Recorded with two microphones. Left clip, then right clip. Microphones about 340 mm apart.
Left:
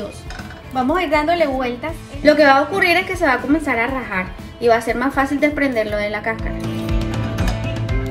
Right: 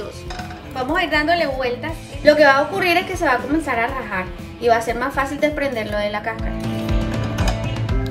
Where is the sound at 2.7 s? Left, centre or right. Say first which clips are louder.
Left 2 dB; centre.